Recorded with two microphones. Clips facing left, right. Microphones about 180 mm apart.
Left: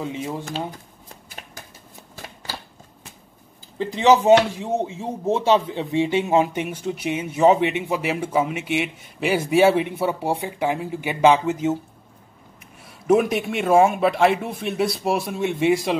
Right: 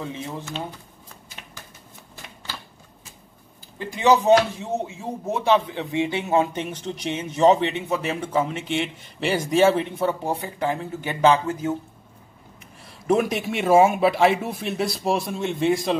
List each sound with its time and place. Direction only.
0.0 s speech: 15° left (ahead or behind)
0.5 s speech: 35° left (ahead or behind)
3.7 s speech: 20° left (ahead or behind)
4.1 s speech: 10° left (ahead or behind)
12.8 s speech: 5° left (ahead or behind)